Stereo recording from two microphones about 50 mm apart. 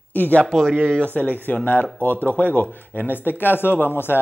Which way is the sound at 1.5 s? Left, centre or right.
Left.